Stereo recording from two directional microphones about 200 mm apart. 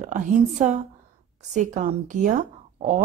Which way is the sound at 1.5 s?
35° right (ahead or behind).